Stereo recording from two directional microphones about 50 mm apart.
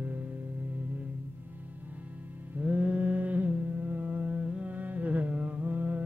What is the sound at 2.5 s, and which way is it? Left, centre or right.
Mantra, right.